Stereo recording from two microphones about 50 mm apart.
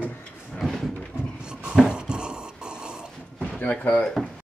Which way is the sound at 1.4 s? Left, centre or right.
Centre.